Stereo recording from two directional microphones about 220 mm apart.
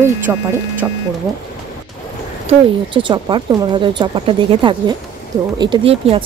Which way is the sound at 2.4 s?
20° right (ahead or behind).